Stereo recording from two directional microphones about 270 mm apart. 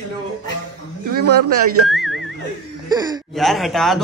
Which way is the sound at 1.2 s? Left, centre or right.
Right.